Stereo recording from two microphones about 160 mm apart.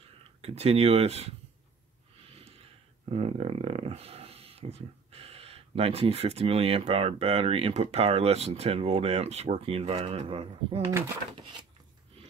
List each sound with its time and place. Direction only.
0.4 s speech: 40° right (ahead or behind)
3.1 s speech: 40° right (ahead or behind)